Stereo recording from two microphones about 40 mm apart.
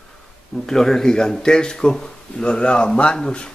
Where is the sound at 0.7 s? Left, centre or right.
Centre.